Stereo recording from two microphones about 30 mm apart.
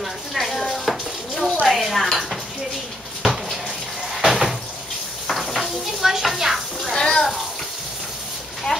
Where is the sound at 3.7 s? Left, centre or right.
Centre.